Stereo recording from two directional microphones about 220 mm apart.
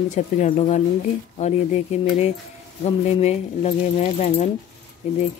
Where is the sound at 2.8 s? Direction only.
30° left (ahead or behind).